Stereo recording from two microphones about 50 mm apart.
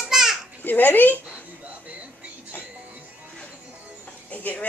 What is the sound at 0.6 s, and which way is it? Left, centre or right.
Speech, left.